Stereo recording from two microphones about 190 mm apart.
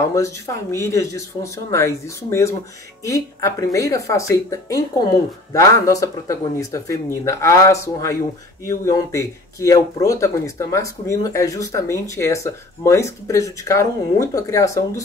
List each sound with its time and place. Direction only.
0.0 s speech: 15° left (ahead or behind)